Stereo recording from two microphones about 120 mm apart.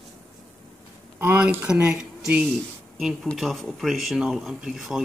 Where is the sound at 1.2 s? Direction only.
15° right (ahead or behind).